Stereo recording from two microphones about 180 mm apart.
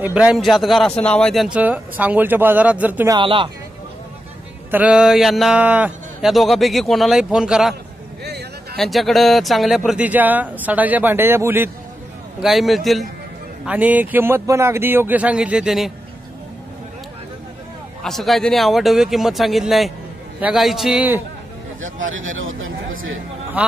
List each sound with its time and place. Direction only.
0.0 s speech: 5° right (ahead or behind)
3.2 s speech: 25° right (ahead or behind)
4.6 s a man's voice: 10° right (ahead or behind)
8.2 s a sound: 65° right (ahead or behind)
8.7 s speech: centre (ahead or behind)
12.4 s a man's voice: centre (ahead or behind)
18.0 s a man's voice: centre (ahead or behind)
22.1 s speech: 90° right